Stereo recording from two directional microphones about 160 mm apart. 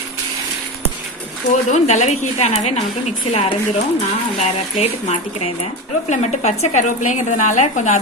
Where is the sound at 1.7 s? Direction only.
45° left (ahead or behind).